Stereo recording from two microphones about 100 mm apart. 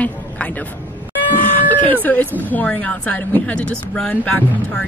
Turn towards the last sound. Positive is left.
turn(degrees=15)  # may be behind; listen again after turning